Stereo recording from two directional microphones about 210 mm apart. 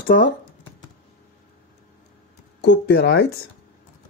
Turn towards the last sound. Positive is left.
turn(degrees=50)  # may be behind; listen again after turning